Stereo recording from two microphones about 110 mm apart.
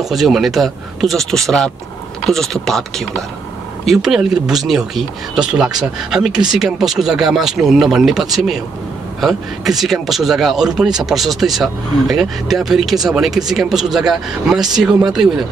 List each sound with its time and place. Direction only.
0.0 s speech: centre (ahead or behind)